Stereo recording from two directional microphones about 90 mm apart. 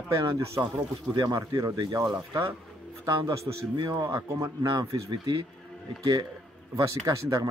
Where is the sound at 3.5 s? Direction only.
50° right (ahead or behind).